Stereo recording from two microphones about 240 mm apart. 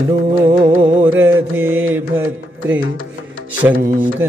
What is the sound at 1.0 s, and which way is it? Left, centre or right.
Mantra, centre.